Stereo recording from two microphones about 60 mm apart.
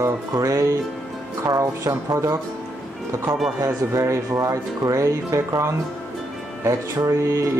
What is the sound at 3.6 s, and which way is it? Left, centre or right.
Speech, right.